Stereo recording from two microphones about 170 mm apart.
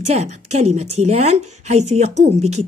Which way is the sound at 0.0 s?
40° right (ahead or behind).